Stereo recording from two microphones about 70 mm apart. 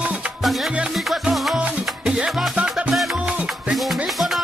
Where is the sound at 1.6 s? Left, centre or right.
Centre.